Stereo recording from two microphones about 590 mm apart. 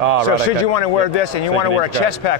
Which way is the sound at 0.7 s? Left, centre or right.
Left.